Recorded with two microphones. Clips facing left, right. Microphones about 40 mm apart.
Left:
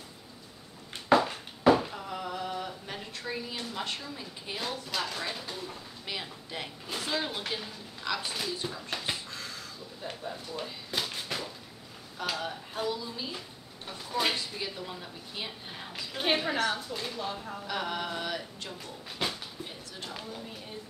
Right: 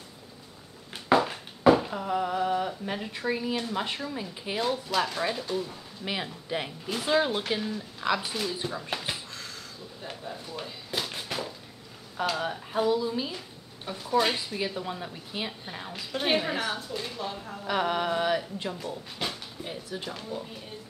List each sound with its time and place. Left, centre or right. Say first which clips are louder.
1.1 s a sound: right 1 dB; centre
3.7 s a woman's voice: right 5 dB; centre
4.6 s a woman's voice: right 7 dB; centre
6.1 s a woman's voice: right 6 dB; centre
9.0 s a sound: even; centre
12.3 s speech: right 3 dB; centre
13.8 s speech: right 5 dB; centre
15.7 s a woman's voice: right 4 dB; centre
17.6 s speech: right 7 dB; centre
19.2 s a sound: left 1 dB; centre
19.6 s speech: right 5 dB; centre